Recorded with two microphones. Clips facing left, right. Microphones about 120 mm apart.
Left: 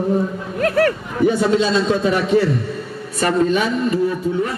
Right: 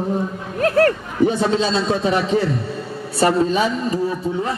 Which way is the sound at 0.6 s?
40° right (ahead or behind).